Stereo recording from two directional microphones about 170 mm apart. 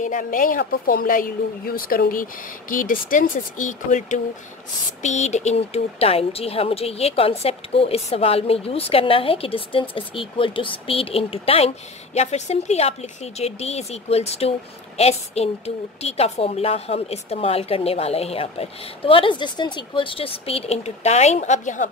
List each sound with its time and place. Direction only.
0.0 s a woman's voice: 50° left (ahead or behind)